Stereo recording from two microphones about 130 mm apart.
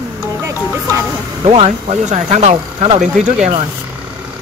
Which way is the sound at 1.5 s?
55° right (ahead or behind).